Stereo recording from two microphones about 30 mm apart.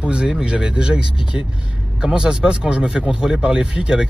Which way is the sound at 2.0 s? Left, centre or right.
Right.